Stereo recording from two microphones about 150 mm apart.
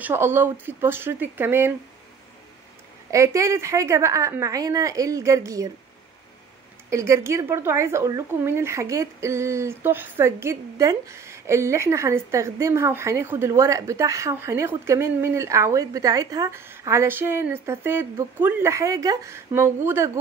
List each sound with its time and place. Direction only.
0.0 s speech: 15° right (ahead or behind)
3.1 s speech: 20° right (ahead or behind)
6.9 s speech: 20° right (ahead or behind)